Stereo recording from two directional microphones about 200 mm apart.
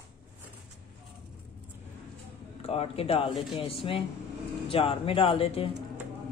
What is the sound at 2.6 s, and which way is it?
Speech, 30° left (ahead or behind).